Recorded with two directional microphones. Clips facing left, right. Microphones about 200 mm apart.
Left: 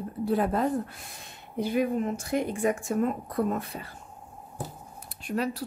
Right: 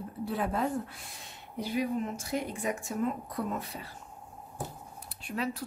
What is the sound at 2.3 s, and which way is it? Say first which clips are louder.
A woman's voice: left 7 dB; 50° left (ahead or behind).